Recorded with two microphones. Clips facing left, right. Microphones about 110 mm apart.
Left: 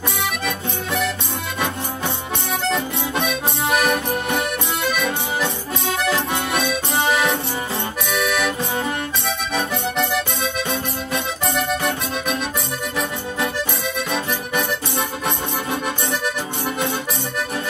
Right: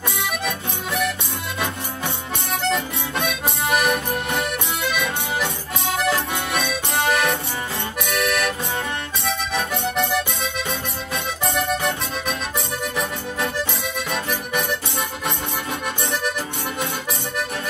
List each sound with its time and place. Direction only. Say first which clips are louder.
2.6 s accordion: even; centre (ahead or behind)
9.5 s music: left 3 dB; centre (ahead or behind)
14.1 s music: left 1 dB; centre (ahead or behind)